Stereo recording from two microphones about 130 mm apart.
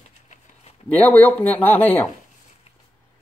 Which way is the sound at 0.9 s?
10° left (ahead or behind).